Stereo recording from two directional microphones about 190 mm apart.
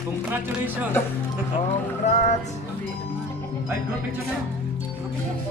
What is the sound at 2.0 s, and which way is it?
Music, 35° left (ahead or behind).